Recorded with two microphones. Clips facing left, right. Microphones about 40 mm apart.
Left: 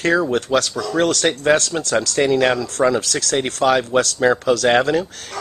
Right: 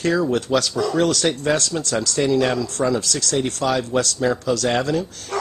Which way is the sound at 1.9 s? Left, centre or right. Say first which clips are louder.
Left 3 dB; left.